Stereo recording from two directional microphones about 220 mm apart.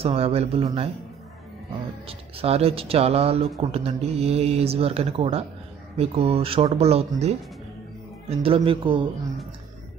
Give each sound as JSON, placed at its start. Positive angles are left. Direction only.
{"t": 0.0, "sound": "speech", "side_deg": -25}
{"t": 2.0, "sound": "speech", "side_deg": -25}